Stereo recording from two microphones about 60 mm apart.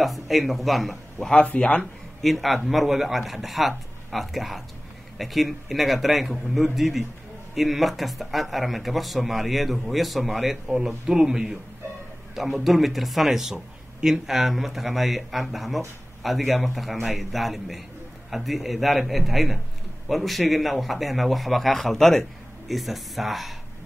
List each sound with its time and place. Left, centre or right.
0.0 s speech: centre
1.3 s speech: centre
2.2 s speech: centre